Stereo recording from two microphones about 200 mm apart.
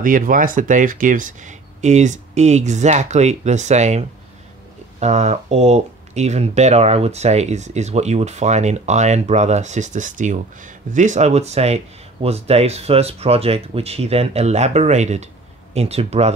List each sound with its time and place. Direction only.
0.0 s speech: 45° right (ahead or behind)
5.0 s speech: 35° right (ahead or behind)